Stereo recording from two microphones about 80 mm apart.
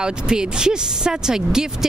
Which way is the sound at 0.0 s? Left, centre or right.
Centre.